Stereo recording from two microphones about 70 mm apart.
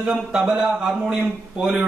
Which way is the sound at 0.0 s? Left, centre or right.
Centre.